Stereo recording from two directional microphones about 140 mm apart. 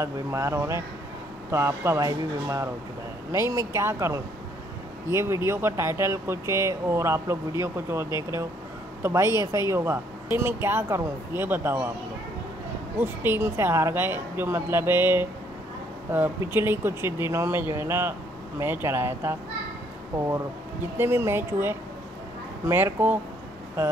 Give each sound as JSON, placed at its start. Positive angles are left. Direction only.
{"t": 0.0, "sound": "a woman's voice", "side_deg": -20}
{"t": 13.0, "sound": "a woman's voice", "side_deg": -15}